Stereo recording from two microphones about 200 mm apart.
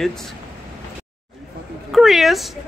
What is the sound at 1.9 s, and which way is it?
Speech, centre (ahead or behind).